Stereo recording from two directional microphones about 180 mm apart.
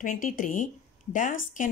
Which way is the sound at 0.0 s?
50° left (ahead or behind).